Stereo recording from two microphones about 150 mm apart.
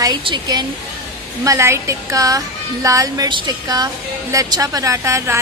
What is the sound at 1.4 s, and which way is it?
A woman's voice, 20° right (ahead or behind).